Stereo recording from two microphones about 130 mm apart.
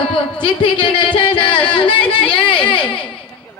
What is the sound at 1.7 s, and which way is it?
Chatter, 40° left (ahead or behind).